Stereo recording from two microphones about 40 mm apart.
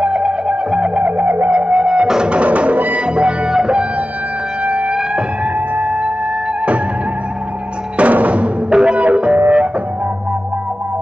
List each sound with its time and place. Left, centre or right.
0.1 s music: right
0.9 s music: right
3.2 s music: right
4.6 s music: right
8.0 s music: right
8.6 s music: right